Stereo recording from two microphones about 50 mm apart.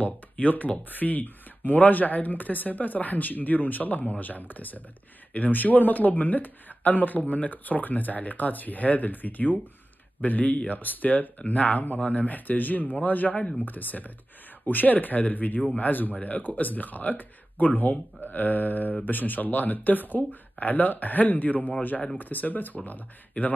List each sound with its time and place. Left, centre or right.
0.0 s speech: left